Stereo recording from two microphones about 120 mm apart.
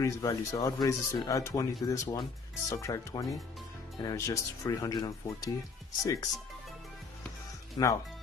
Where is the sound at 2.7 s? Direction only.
25° left (ahead or behind).